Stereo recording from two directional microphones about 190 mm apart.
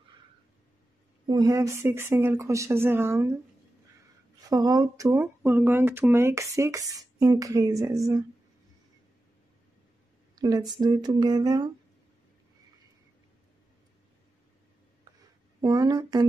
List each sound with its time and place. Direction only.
1.2 s speech: 20° right (ahead or behind)
4.5 s speech: 20° right (ahead or behind)
10.3 s speech: 20° right (ahead or behind)
15.6 s speech: 20° right (ahead or behind)